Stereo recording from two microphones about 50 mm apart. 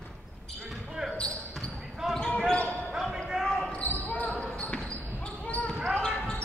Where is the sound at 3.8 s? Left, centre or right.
Left.